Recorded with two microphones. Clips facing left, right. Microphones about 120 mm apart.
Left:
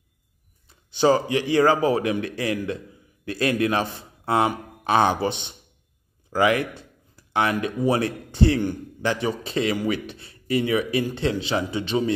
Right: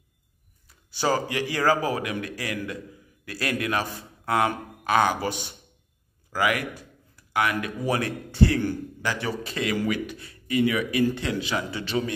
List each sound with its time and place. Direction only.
0.7 s a man's voice: 20° left (ahead or behind)